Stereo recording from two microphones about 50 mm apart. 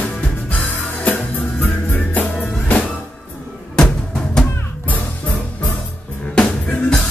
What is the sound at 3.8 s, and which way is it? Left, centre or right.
Drum, centre.